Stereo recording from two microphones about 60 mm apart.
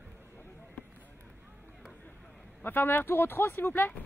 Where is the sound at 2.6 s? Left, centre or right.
Left.